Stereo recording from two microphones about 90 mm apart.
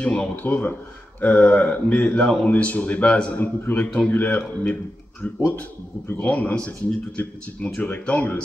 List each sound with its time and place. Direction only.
0.0 s a man's voice: 10° left (ahead or behind)